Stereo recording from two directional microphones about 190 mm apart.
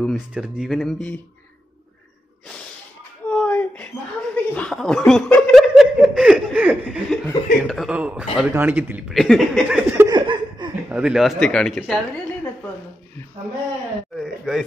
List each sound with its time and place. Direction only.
0.0 s speech: centre (ahead or behind)
3.3 s a sound: 5° left (ahead or behind)
4.6 s speech: centre (ahead or behind)
7.1 s speech: centre (ahead or behind)
10.1 s a sound: 25° right (ahead or behind)
10.9 s speech: 5° right (ahead or behind)
14.1 s speech: centre (ahead or behind)